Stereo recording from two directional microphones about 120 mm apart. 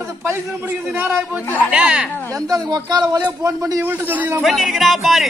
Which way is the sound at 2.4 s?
30° right (ahead or behind).